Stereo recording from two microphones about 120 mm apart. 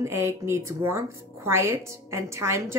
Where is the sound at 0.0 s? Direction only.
25° right (ahead or behind).